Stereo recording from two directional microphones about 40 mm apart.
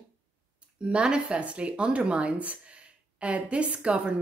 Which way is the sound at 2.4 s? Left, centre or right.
Right.